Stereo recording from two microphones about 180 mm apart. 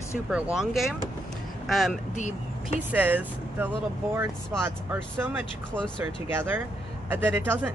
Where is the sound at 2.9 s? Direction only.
10° right (ahead or behind).